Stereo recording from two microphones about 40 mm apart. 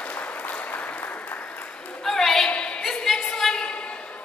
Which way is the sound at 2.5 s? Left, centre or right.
Left.